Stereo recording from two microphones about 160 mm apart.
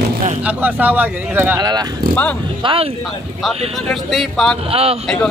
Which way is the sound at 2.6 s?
35° right (ahead or behind).